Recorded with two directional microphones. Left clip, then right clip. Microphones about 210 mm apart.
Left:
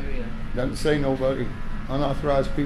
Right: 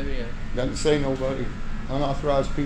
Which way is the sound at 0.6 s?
15° left (ahead or behind).